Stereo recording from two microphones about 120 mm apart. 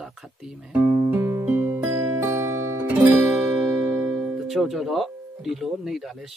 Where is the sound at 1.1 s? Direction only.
15° right (ahead or behind).